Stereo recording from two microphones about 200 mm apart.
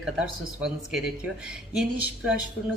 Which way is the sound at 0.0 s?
5° right (ahead or behind).